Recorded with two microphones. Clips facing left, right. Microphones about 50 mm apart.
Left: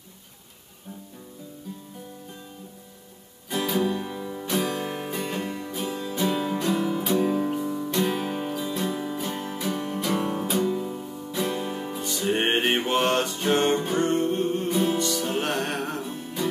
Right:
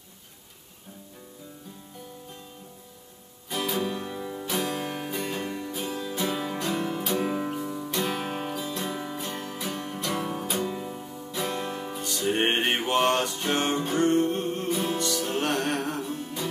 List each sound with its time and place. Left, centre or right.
3.4 s music: centre
7.2 s music: centre
7.4 s music: centre
10.6 s music: centre
11.1 s music: centre